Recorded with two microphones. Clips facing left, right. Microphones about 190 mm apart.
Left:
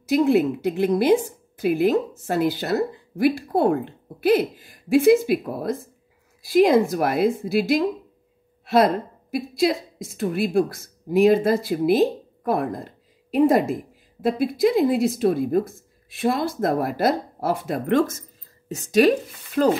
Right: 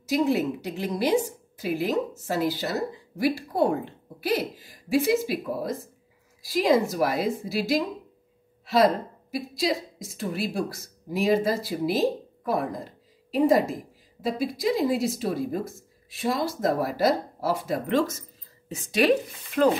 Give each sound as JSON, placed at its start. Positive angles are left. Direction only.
{"t": 0.0, "sound": "a woman's voice", "side_deg": 55}